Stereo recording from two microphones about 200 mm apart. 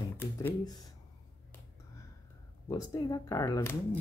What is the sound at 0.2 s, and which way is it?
Computer keyboard, 10° left (ahead or behind).